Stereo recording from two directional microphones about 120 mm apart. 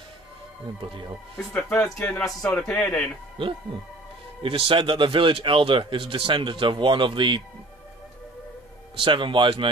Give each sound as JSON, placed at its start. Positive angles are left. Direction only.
{"t": 0.7, "sound": "speech", "side_deg": -45}
{"t": 1.5, "sound": "speech", "side_deg": 15}
{"t": 3.4, "sound": "speech", "side_deg": -45}
{"t": 9.0, "sound": "speech", "side_deg": -45}